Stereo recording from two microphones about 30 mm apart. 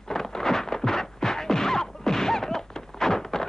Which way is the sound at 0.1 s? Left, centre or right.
Centre.